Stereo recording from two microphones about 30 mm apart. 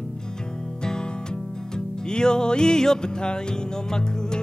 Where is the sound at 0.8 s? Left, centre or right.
Left.